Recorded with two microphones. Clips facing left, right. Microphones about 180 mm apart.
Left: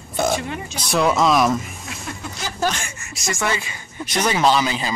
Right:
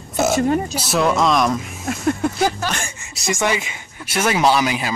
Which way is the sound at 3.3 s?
15° right (ahead or behind).